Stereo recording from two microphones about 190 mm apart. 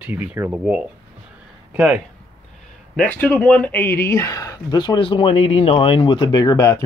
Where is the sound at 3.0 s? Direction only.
10° left (ahead or behind).